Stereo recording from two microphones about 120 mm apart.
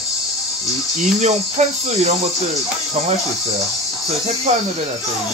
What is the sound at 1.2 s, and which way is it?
Cricket, 70° right (ahead or behind).